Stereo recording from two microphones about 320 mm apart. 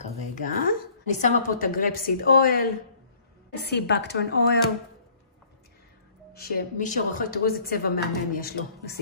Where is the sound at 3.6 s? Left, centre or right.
Left.